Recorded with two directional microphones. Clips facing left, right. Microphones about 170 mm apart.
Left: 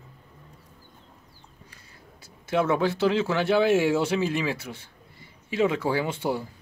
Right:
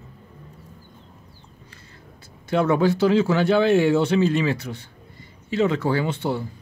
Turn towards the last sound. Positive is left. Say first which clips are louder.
# right 3 dB
turn(degrees=10)  # may be behind; listen again after turning